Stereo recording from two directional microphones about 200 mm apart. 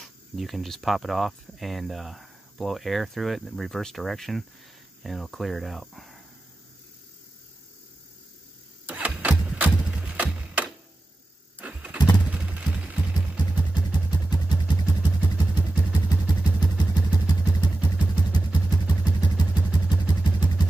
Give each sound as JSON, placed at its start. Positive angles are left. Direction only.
{"t": 0.0, "sound": "speech", "side_deg": 0}
{"t": 8.8, "sound": "vehicle", "side_deg": -5}
{"t": 9.8, "sound": "music", "side_deg": -5}
{"t": 11.6, "sound": "vehicle", "side_deg": -5}
{"t": 12.3, "sound": "clip-clop", "side_deg": -5}
{"t": 13.6, "sound": "vehicle", "side_deg": 20}